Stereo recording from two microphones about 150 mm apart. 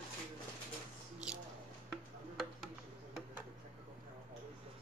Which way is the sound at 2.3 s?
Centre (ahead or behind).